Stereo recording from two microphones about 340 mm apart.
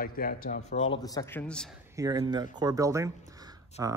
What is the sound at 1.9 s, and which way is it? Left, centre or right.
Speech, centre.